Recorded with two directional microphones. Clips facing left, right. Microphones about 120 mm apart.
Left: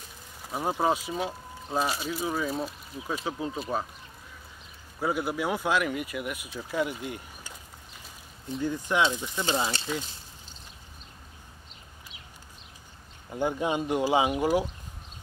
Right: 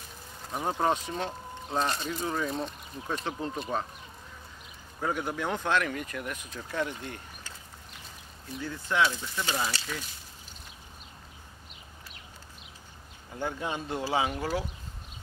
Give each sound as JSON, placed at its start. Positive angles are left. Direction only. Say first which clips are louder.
{"t": 0.5, "sound": "speech", "louder": "left 1 dB", "side_deg": 5}
{"t": 5.0, "sound": "speech", "louder": "left 3 dB", "side_deg": 10}
{"t": 8.5, "sound": "speech", "louder": "left 2 dB", "side_deg": 15}
{"t": 13.3, "sound": "speech", "louder": "left 6 dB", "side_deg": 15}